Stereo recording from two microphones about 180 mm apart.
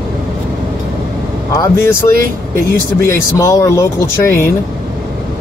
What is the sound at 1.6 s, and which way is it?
Speech, 15° left (ahead or behind).